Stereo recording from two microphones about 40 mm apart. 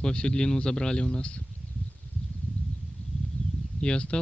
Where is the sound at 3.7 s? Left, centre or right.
Left.